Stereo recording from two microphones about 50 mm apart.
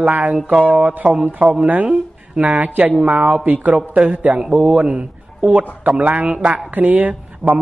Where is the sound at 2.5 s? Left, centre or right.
Right.